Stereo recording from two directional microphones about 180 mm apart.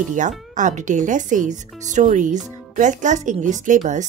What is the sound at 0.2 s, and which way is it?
Speech, 45° right (ahead or behind).